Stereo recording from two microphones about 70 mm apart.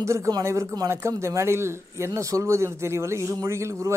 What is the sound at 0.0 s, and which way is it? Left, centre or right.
Speech, right.